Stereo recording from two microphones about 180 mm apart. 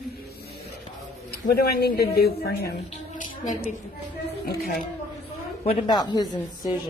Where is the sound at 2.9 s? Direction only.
45° left (ahead or behind).